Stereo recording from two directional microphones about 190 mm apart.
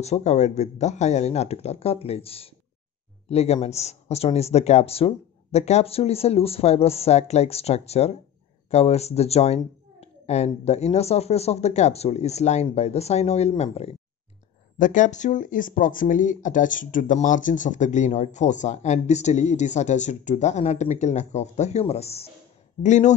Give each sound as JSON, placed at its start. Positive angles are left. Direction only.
{"t": 0.0, "sound": "speech", "side_deg": 35}